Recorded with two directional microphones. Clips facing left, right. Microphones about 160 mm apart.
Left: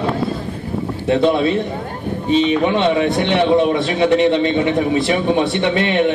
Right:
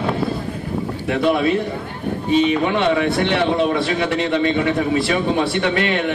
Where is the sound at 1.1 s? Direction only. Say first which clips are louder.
Left 3 dB; 25° left (ahead or behind).